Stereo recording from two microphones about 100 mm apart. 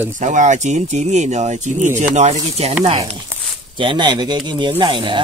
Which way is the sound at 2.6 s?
90° right.